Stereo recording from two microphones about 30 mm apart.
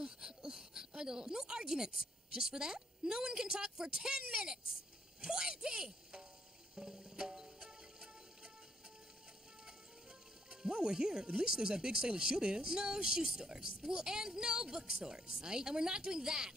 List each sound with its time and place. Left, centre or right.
0.0 s speech: right
6.7 s music: right
10.5 s speech: right